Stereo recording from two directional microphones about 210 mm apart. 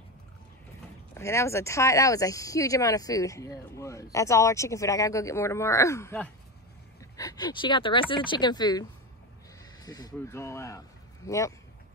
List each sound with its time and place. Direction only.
1.1 s speech: 15° left (ahead or behind)
9.8 s speech: 15° left (ahead or behind)